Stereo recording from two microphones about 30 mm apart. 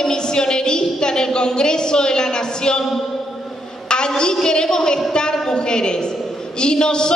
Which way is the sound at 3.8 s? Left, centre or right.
Left.